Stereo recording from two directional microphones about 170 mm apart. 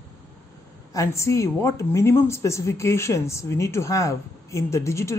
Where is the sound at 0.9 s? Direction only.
20° left (ahead or behind).